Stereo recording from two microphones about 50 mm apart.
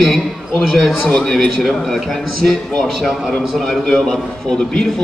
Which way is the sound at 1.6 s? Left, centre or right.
Centre.